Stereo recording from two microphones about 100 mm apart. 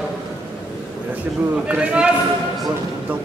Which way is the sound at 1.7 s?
10° right (ahead or behind).